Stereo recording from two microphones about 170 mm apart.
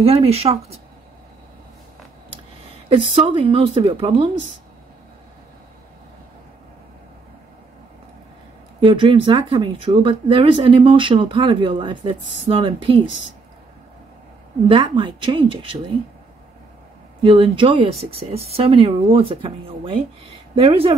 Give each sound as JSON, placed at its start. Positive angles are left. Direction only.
{"t": 0.0, "sound": "speech", "side_deg": -35}
{"t": 3.2, "sound": "speech", "side_deg": -35}
{"t": 8.8, "sound": "speech", "side_deg": -30}
{"t": 14.7, "sound": "speech", "side_deg": -30}
{"t": 17.2, "sound": "speech", "side_deg": -30}